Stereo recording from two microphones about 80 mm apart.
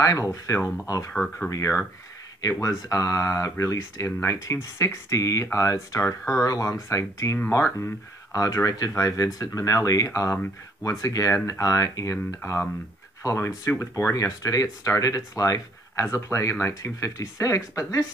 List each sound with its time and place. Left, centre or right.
0.0 s speech: left
1.1 s speech: centre
1.5 s speech: left
2.9 s speech: left